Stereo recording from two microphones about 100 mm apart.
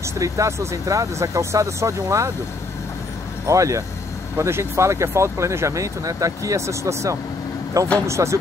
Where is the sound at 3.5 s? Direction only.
35° right (ahead or behind).